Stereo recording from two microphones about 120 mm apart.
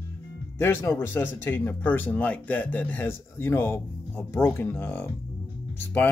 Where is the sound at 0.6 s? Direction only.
20° left (ahead or behind).